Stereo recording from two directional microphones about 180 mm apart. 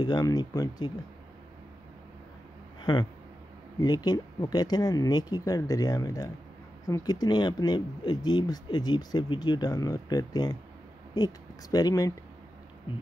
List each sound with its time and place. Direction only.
0.0 s speech: 20° left (ahead or behind)
2.8 s speech: 25° left (ahead or behind)